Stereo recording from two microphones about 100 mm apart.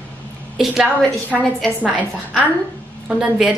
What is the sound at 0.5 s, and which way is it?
A woman's voice, 5° right (ahead or behind).